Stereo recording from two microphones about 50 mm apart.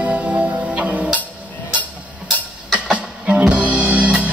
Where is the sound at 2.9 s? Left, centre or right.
Right.